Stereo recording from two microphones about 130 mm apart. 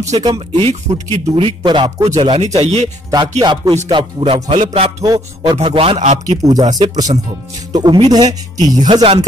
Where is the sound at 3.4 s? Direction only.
35° right (ahead or behind); by 4.9 s 60° right (ahead or behind).